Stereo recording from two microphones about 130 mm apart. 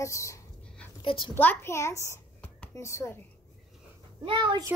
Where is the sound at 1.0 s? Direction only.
40° left (ahead or behind).